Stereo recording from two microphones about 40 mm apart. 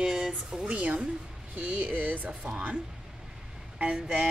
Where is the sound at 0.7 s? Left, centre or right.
Right.